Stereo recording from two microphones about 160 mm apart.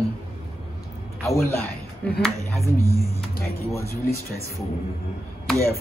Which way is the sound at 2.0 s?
10° left (ahead or behind).